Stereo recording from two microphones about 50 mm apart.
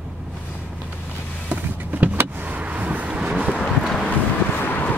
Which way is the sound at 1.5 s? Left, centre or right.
Right.